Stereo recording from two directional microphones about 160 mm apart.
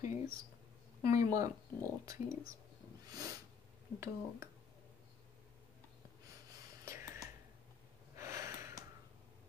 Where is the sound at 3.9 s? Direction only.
15° right (ahead or behind).